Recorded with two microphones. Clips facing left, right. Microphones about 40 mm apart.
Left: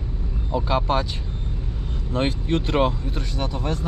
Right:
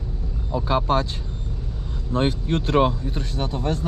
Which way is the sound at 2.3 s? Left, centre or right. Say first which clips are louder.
Right 1 dB; left.